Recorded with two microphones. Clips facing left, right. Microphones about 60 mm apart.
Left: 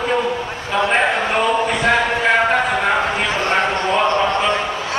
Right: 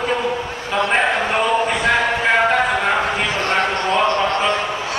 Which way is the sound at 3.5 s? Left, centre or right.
Centre.